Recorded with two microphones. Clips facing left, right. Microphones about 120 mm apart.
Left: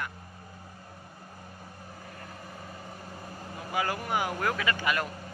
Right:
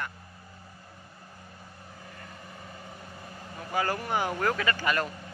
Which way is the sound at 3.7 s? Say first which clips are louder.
Right 1 dB; 10° left (ahead or behind).